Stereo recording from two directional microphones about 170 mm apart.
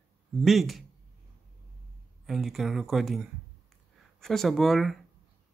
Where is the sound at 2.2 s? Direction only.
Centre (ahead or behind).